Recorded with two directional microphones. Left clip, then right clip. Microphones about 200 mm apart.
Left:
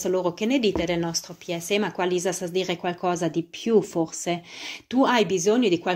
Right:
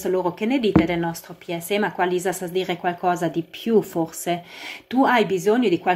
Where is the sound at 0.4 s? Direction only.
40° left (ahead or behind).